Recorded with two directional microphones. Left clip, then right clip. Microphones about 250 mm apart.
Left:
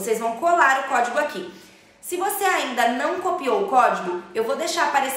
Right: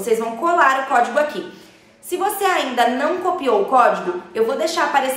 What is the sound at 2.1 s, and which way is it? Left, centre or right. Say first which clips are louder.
A woman's voice: right 3 dB; centre.